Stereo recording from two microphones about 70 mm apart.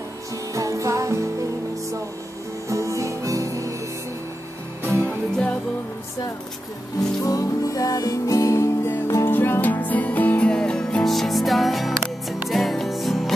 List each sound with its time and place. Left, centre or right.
0.6 s music: right
2.7 s music: right
5.0 s music: centre
7.2 s music: left; by 13.3 s centre